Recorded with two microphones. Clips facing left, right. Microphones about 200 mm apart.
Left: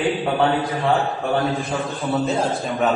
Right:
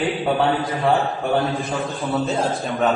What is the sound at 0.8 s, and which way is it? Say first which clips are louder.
A man's voice: right 3 dB; centre (ahead or behind).